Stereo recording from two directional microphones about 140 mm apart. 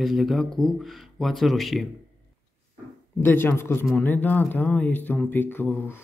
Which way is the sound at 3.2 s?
15° left (ahead or behind).